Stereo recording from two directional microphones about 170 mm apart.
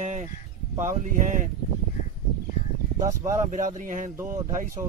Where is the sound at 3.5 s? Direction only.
50° right (ahead or behind).